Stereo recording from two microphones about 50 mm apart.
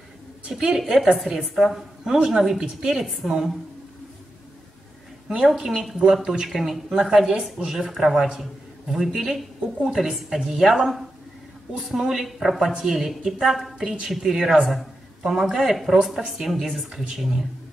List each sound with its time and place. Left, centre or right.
0.5 s a woman's voice: centre
5.5 s a woman's voice: centre
13.7 s a woman's voice: centre